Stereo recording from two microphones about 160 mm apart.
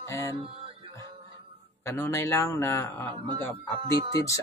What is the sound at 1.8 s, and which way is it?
A man's voice, 15° left (ahead or behind).